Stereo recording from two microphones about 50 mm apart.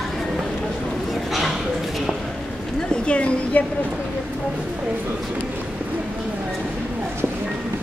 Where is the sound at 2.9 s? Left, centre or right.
Left.